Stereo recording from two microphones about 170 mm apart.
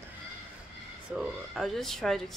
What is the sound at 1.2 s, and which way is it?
Speech, centre (ahead or behind).